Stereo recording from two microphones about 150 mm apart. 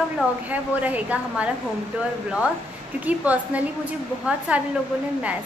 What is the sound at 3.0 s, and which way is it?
A woman's voice, 10° right (ahead or behind).